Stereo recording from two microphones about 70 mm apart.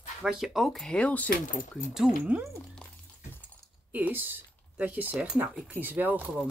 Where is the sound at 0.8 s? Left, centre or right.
Centre.